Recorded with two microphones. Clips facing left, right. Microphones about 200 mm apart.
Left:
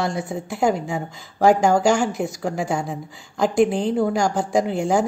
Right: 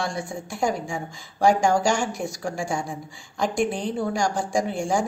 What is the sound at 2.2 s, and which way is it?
Speech, 20° left (ahead or behind).